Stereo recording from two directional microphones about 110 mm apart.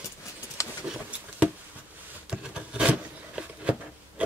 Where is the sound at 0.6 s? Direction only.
30° left (ahead or behind).